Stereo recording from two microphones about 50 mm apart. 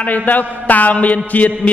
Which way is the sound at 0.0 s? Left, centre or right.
Left.